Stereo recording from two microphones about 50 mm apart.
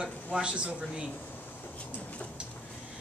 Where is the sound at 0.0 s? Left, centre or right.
Centre.